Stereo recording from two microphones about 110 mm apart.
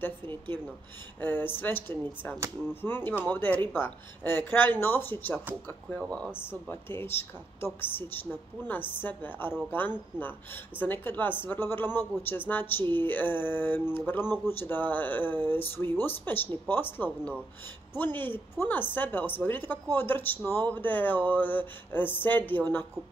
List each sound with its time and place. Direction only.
0.0 s speech: 20° left (ahead or behind)